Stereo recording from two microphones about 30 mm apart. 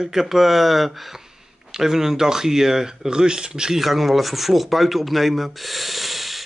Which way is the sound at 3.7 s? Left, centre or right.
Centre.